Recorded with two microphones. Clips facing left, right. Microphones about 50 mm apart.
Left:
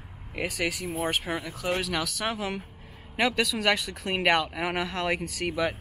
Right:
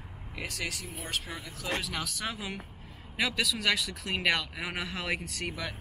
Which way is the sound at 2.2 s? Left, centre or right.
Centre.